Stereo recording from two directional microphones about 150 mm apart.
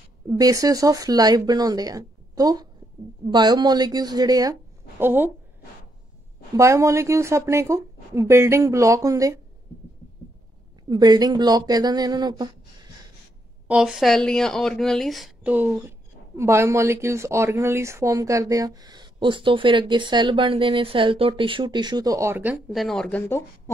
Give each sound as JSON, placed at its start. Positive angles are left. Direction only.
{"t": 0.3, "sound": "speech", "side_deg": -25}
{"t": 6.5, "sound": "speech", "side_deg": -20}
{"t": 10.9, "sound": "speech", "side_deg": -25}
{"t": 13.7, "sound": "speech", "side_deg": -5}